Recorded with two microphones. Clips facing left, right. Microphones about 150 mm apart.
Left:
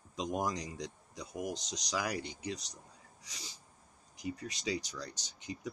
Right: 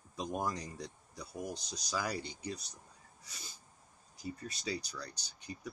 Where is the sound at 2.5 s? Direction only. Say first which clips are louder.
Left 2 dB; 90° left.